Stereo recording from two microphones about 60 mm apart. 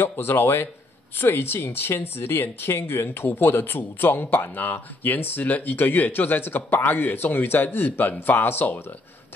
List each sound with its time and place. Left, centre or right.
0.0 s speech: left